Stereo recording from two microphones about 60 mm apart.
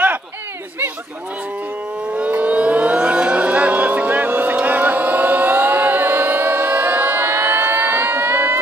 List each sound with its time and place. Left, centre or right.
2.0 s civil defense siren: centre
4.6 s vehicle: right